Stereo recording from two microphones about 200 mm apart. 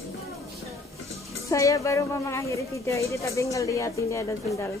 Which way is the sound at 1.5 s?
15° left (ahead or behind).